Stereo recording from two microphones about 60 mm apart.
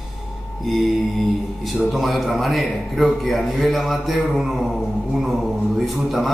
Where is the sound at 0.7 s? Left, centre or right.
Centre.